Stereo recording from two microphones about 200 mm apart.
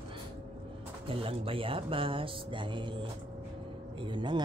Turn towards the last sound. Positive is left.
turn(degrees=-25)  # may be behind; listen again after turning